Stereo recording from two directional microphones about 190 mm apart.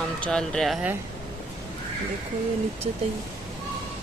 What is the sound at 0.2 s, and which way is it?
Speech, 5° left (ahead or behind).